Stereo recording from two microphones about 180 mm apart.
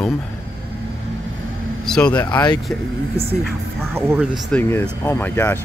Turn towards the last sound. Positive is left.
turn(degrees=10)  # may be behind; listen again after turning